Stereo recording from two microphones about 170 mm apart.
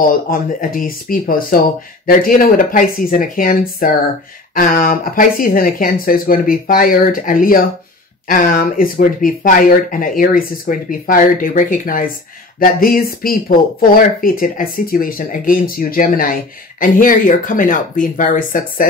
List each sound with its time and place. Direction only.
0.0 s speech: 55° left (ahead or behind)